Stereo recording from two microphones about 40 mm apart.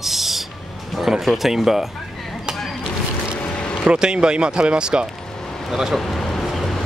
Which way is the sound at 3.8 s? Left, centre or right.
Right.